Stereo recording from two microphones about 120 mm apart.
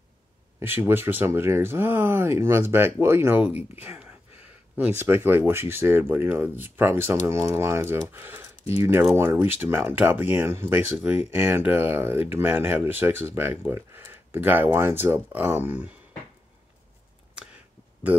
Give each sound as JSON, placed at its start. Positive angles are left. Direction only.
{"t": 0.6, "sound": "speech", "side_deg": -20}
{"t": 3.8, "sound": "a sound", "side_deg": -15}
{"t": 4.7, "sound": "speech", "side_deg": -15}